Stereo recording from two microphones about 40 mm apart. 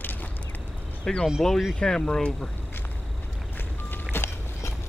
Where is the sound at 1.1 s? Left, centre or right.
Centre.